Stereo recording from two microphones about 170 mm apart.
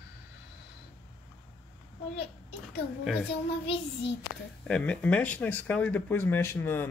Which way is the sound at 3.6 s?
90° left.